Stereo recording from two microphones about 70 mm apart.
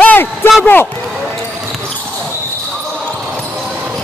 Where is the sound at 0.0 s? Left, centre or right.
Left.